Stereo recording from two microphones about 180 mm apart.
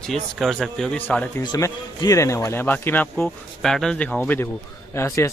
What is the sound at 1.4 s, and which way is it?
A man's voice, 20° left (ahead or behind).